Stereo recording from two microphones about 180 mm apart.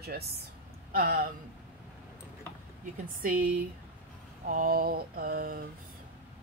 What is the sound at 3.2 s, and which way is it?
A woman's voice, 50° right (ahead or behind).